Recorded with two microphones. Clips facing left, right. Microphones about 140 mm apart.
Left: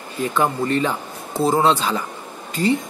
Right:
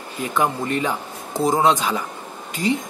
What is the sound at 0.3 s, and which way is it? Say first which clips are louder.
Speech: left 1 dB; 15° right (ahead or behind).